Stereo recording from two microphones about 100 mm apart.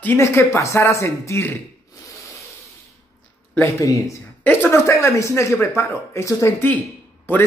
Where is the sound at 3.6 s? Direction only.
35° left (ahead or behind).